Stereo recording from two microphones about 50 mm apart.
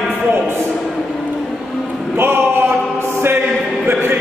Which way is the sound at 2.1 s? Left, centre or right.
Right.